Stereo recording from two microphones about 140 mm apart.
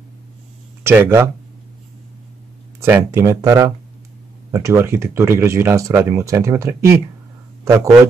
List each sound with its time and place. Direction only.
0.8 s speech: 15° right (ahead or behind)
2.8 s speech: 20° right (ahead or behind)